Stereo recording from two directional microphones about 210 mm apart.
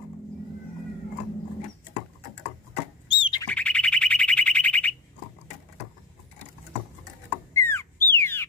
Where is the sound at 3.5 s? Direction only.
5° left (ahead or behind).